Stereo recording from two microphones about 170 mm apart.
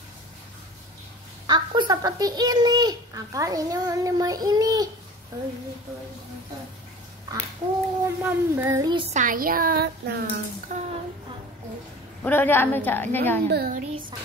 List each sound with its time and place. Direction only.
1.5 s a child's voice: 25° right (ahead or behind)
8.0 s a sound: 10° right (ahead or behind)
9.1 s a woman's voice: 50° right (ahead or behind); by 10.4 s 65° right (ahead or behind)
10.7 s a sound: 45° right (ahead or behind)
12.2 s a woman's voice: 10° left (ahead or behind)
13.5 s a woman's voice: 65° right (ahead or behind)